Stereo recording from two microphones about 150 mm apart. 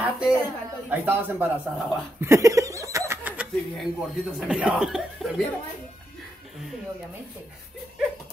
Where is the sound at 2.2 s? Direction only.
20° right (ahead or behind).